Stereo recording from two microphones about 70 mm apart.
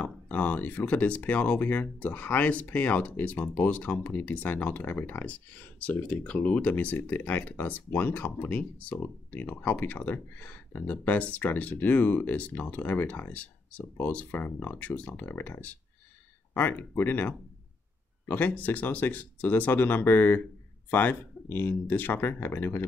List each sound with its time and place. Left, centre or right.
0.0 s speech: left